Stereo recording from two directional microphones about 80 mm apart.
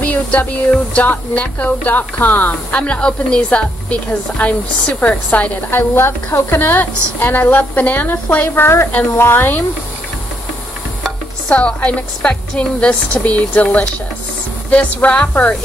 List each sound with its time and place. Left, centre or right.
0.0 s a woman's voice: centre
8.6 s a woman's voice: left
11.5 s a woman's voice: centre